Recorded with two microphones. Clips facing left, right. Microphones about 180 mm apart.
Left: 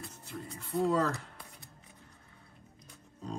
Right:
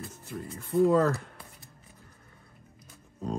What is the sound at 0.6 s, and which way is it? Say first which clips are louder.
Speech: right 7 dB; 50° right (ahead or behind).